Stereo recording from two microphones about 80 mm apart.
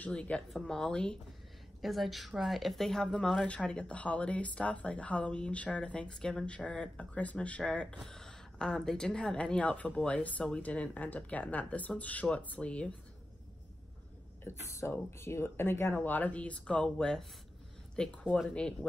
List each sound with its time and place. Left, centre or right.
0.0 s speech: centre
1.8 s speech: centre
14.4 s speech: left; by 18.9 s centre